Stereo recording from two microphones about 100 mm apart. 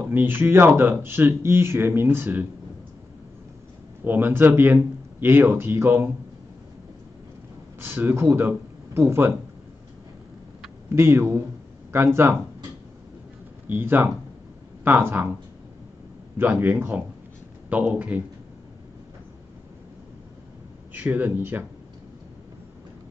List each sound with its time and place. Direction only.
0.1 s speech: 20° right (ahead or behind)
4.0 s speech: 20° right (ahead or behind)
7.8 s speech: 25° right (ahead or behind)
10.9 s speech: 25° right (ahead or behind)
13.7 s a man's voice: 20° right (ahead or behind)
16.3 s a man's voice: 20° right (ahead or behind)
20.9 s speech: 15° right (ahead or behind)